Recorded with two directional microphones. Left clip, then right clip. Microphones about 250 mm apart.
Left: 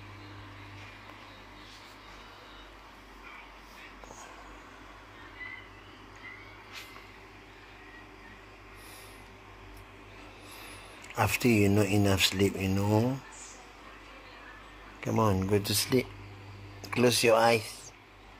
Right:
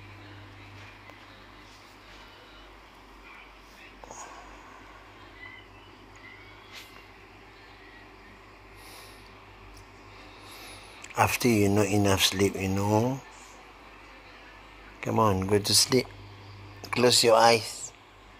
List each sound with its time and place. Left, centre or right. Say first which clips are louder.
11.1 s speech: right 3 dB; centre
15.0 s speech: right 4 dB; centre
15.6 s speech: right 5 dB; right
16.9 s speech: right 3 dB; centre